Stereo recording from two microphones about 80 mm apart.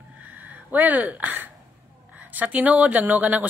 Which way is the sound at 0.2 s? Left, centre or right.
Right.